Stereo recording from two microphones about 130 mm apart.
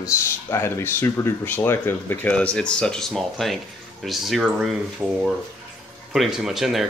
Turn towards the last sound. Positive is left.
turn(degrees=0)  # may be behind; listen again after turning